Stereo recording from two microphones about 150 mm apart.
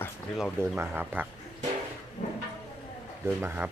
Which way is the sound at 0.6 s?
15° right (ahead or behind).